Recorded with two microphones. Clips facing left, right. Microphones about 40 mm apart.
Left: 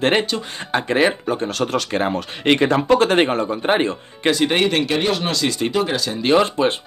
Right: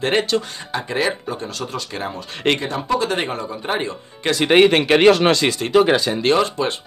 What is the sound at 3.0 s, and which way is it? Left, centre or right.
Speech, left.